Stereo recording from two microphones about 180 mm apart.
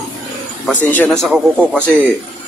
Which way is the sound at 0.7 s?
10° left (ahead or behind).